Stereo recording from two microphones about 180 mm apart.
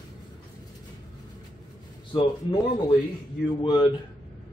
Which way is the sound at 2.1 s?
25° left (ahead or behind).